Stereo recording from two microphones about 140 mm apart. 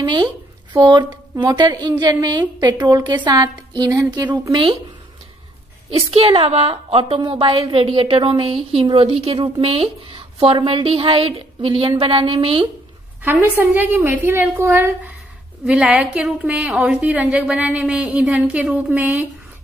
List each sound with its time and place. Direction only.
0.0 s speech: 30° right (ahead or behind)
5.9 s speech: 45° right (ahead or behind)
13.2 s a woman's voice: 15° right (ahead or behind)